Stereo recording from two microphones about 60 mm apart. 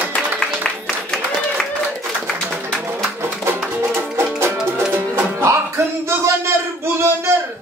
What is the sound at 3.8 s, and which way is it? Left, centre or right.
Music, right.